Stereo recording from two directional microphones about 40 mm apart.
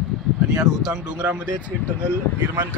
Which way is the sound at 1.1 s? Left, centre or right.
Right.